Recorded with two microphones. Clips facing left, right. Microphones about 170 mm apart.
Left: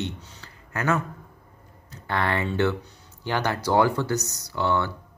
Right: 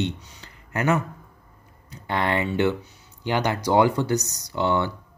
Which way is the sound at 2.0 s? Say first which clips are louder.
Right 2 dB; 15° right (ahead or behind).